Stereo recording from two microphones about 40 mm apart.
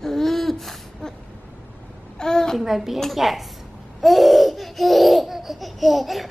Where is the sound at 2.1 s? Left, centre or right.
Centre.